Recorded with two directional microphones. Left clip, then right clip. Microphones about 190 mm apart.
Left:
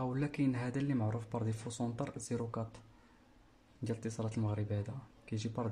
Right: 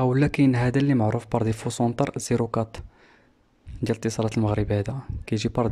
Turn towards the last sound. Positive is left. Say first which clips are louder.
# right 15 dB
turn(degrees=-45)  # may be behind; listen again after turning